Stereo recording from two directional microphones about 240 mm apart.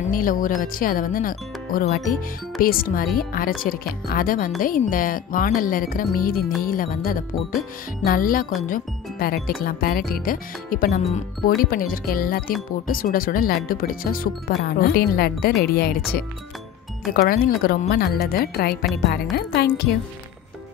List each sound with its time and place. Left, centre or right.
0.1 s speech: left